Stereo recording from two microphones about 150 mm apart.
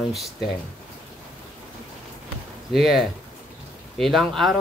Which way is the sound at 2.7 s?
Centre (ahead or behind).